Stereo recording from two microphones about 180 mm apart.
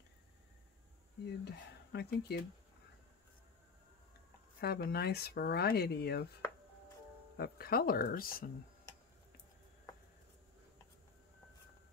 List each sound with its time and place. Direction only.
1.4 s speech: 65° left (ahead or behind)
4.6 s speech: 60° left (ahead or behind)
7.3 s speech: 60° left (ahead or behind)